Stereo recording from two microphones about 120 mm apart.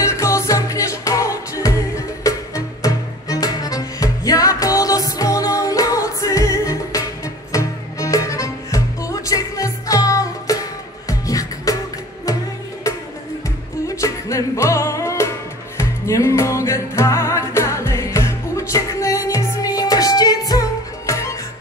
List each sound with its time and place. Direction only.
0.0 s music: 25° left (ahead or behind)
13.8 s music: 25° left (ahead or behind)